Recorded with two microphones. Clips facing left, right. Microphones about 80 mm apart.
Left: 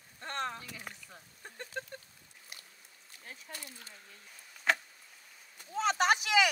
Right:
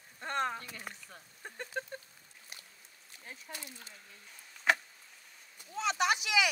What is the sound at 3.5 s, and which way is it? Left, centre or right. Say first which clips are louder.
Speech: right 1 dB; centre.